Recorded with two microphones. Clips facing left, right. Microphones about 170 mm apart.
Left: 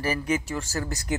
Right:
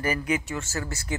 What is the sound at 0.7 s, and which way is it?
Speech, 35° left (ahead or behind).